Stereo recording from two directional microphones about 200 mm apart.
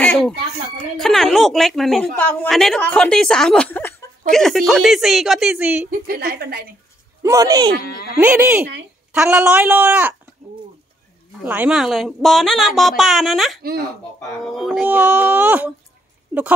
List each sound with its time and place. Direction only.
0.0 s a sound: 5° left (ahead or behind)
0.9 s speech: centre (ahead or behind)
5.9 s a woman's voice: 45° right (ahead or behind)
7.2 s speech: 15° right (ahead or behind)
7.8 s speech: 50° left (ahead or behind)
8.2 s speech: 10° right (ahead or behind)
11.4 s speech: 10° right (ahead or behind)